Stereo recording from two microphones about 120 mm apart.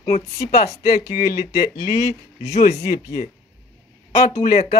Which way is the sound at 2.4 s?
70° left (ahead or behind).